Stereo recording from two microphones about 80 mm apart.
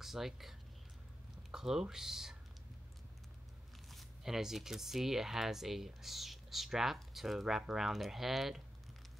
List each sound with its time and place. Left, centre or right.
0.0 s speech: centre
3.9 s speech: centre